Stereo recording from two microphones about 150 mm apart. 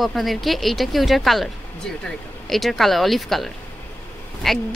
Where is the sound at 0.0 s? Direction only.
Centre (ahead or behind).